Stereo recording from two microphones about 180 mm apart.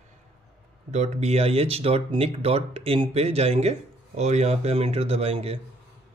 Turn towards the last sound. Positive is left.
turn(degrees=-35)  # may be behind; listen again after turning